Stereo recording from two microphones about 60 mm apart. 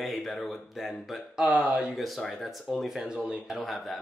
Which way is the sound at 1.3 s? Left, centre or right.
Centre.